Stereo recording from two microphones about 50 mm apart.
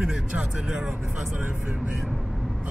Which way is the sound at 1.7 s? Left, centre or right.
Centre.